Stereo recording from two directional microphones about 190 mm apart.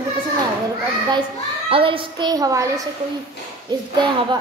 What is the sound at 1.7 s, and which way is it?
A woman's voice, 30° right (ahead or behind).